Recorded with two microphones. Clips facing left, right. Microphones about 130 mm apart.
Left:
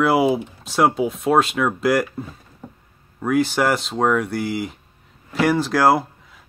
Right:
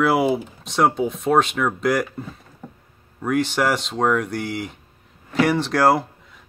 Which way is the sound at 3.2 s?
Centre (ahead or behind).